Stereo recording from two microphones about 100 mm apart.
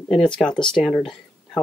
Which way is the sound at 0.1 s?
5° left (ahead or behind).